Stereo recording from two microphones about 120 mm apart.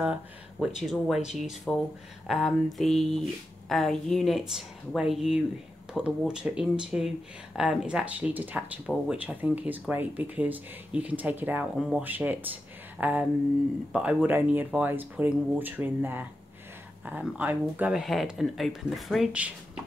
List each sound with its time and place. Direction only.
0.0 s speech: 5° right (ahead or behind)
17.9 s speech: centre (ahead or behind)
19.3 s speech: 10° right (ahead or behind)